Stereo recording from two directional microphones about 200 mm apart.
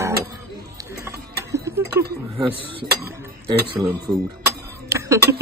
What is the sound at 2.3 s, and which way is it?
Speech, 25° right (ahead or behind).